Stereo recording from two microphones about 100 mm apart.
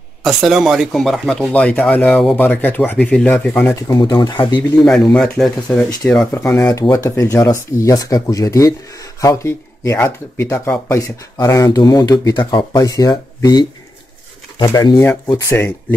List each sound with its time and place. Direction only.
0.2 s speech: 5° right (ahead or behind)
1.5 s speech: 15° left (ahead or behind)
3.9 s speech: 45° left (ahead or behind)
4.8 s speech: 5° left (ahead or behind)
6.7 s speech: 30° left (ahead or behind)
15.3 s speech: 20° left (ahead or behind)